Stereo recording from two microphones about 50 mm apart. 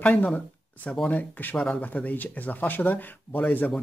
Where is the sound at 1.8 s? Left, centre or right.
Left.